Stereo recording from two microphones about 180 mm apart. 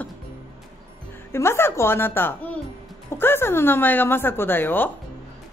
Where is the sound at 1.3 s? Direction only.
15° left (ahead or behind).